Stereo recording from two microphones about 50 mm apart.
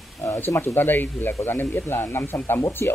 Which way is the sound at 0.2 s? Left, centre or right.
Left.